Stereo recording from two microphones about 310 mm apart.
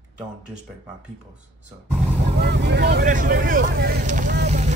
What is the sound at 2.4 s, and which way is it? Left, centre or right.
Vehicle, right.